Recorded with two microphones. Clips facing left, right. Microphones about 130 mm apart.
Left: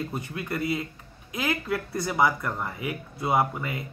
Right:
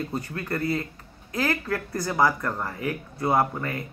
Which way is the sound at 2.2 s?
Centre (ahead or behind).